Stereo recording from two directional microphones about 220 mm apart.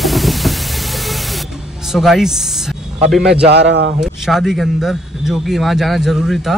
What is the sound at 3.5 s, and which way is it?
Speech, 50° right (ahead or behind).